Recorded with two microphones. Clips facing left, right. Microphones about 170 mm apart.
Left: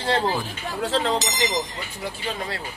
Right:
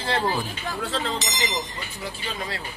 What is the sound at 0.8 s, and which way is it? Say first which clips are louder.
Speech: left 6 dB; 90° left.